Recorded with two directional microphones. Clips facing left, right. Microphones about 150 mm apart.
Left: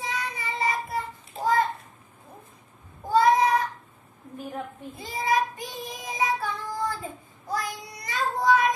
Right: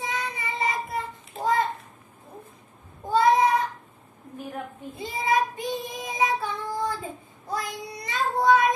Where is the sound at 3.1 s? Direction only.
20° right (ahead or behind).